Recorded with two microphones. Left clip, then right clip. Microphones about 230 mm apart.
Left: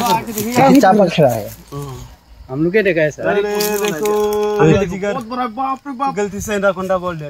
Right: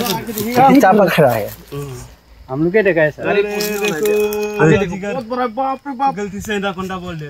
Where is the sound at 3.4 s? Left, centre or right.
Left.